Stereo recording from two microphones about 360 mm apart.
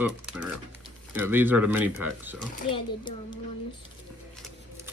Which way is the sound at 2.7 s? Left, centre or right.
Centre.